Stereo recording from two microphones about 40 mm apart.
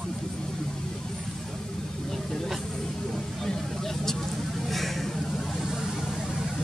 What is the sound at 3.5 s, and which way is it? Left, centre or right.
Vehicle, centre.